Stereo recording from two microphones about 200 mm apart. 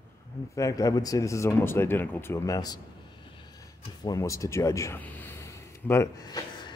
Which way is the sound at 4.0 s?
15° left (ahead or behind).